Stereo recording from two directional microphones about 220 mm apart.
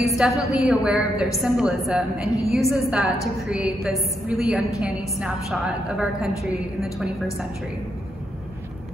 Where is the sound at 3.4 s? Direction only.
Centre (ahead or behind).